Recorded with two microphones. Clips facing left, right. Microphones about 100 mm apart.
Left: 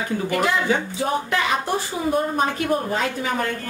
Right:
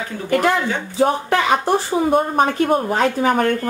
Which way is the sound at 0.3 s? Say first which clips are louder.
Right 4 dB; 50° right (ahead or behind).